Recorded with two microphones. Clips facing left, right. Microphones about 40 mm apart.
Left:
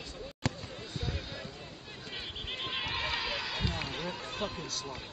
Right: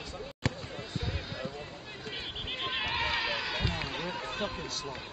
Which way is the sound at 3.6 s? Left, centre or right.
Centre.